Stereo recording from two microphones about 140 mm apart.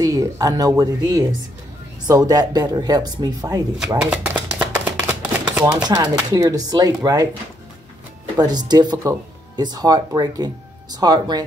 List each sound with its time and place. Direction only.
0.0 s speech: 25° right (ahead or behind)
4.0 s chopping: 10° right (ahead or behind)
5.8 s speech: 30° right (ahead or behind)
8.4 s speech: 30° right (ahead or behind)